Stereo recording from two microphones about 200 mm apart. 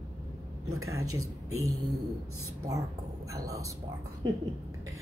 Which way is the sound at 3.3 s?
15° right (ahead or behind).